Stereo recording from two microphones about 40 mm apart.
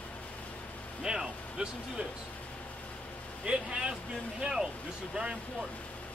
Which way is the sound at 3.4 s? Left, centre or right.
Right.